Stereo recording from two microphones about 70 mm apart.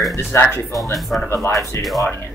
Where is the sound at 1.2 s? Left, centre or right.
Left.